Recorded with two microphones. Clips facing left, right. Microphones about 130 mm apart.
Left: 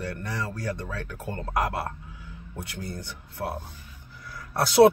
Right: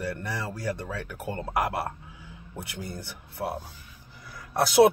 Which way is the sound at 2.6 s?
10° right (ahead or behind).